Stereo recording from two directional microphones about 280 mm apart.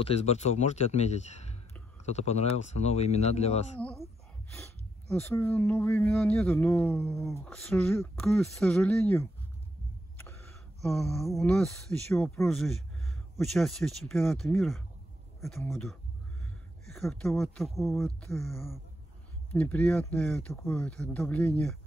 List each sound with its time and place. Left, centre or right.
0.0 s speech: left
5.3 s speech: centre
10.8 s speech: centre